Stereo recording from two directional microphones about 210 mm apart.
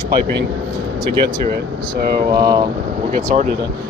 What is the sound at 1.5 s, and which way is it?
Speech, 50° right (ahead or behind).